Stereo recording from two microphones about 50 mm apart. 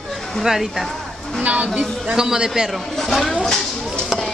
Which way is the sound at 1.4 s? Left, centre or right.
Right.